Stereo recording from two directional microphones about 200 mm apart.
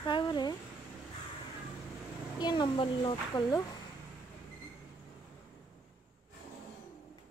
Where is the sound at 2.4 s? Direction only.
20° left (ahead or behind).